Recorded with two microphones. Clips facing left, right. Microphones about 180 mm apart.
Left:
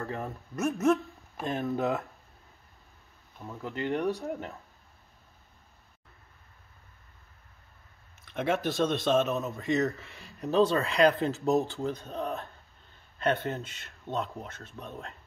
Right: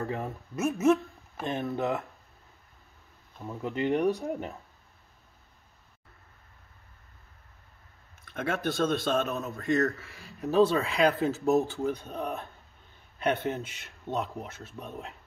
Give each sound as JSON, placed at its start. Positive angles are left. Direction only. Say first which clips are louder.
{"t": 0.2, "sound": "speech", "louder": "right 1 dB", "side_deg": 0}
{"t": 3.6, "sound": "speech", "louder": "right 4 dB", "side_deg": -15}
{"t": 8.3, "sound": "speech", "louder": "left 2 dB", "side_deg": 0}
{"t": 13.2, "sound": "speech", "louder": "even", "side_deg": -15}